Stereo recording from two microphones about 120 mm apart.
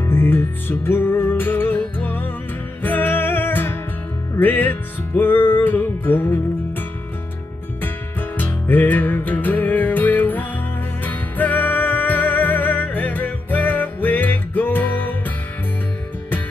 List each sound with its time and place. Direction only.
0.1 s music: 20° left (ahead or behind)
7.8 s music: 15° left (ahead or behind)